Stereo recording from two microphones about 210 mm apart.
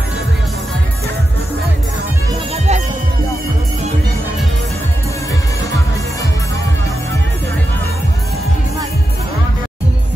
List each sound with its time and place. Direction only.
2.5 s music: 30° right (ahead or behind)